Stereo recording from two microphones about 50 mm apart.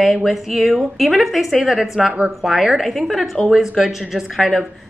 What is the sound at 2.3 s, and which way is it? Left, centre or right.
A woman's voice, centre.